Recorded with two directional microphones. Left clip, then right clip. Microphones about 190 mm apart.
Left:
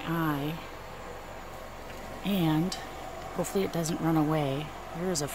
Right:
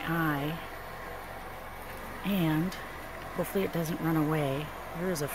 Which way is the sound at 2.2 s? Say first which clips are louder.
Left 2 dB; 10° left (ahead or behind).